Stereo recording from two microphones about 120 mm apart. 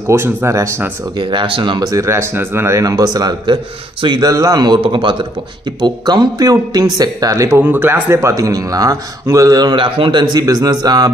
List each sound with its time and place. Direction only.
0.1 s speech: 20° right (ahead or behind)
1.3 s speech: 45° right (ahead or behind)
1.9 s speech: 25° right (ahead or behind)
4.8 s speech: 45° right (ahead or behind)
10.3 s speech: 30° right (ahead or behind)